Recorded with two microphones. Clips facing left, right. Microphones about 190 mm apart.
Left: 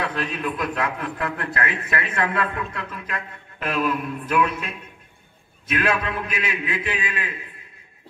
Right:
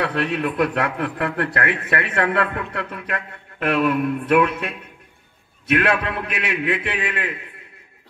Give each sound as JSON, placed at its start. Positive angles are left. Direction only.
{"t": 0.0, "sound": "a man's voice", "side_deg": -65}